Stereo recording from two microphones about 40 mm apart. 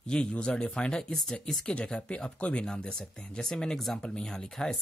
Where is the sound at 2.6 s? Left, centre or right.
Left.